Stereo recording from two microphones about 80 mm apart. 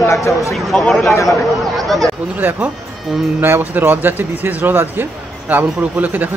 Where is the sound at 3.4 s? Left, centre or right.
Right.